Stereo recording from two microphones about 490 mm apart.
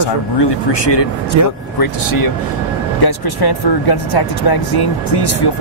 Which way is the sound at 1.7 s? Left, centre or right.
Left.